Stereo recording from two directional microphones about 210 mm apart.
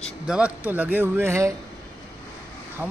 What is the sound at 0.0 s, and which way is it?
Speech, 5° right (ahead or behind).